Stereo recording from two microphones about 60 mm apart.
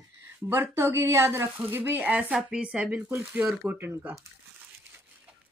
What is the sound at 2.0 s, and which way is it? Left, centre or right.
Speech, centre.